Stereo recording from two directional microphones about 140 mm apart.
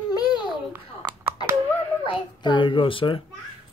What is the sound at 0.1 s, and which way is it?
Babbling, 30° left (ahead or behind).